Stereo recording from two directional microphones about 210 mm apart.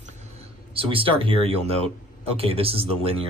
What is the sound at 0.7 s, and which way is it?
Speech, 25° right (ahead or behind).